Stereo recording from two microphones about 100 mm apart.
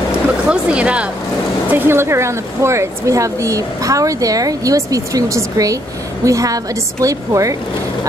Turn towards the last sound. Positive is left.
turn(degrees=-35)  # may be behind; listen again after turning